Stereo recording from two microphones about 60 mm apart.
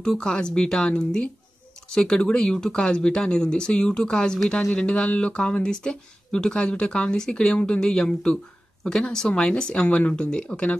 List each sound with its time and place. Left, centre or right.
0.0 s speech: centre